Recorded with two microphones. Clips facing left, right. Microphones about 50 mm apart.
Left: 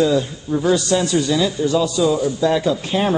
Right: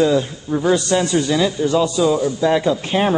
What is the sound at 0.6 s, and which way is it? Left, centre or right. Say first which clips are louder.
Speech: even; centre.